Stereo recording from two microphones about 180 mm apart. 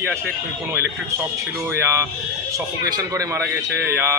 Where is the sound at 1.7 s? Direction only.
15° right (ahead or behind).